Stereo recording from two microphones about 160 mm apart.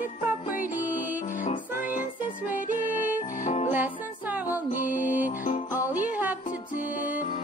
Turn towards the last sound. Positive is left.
turn(degrees=-10)  # may be behind; listen again after turning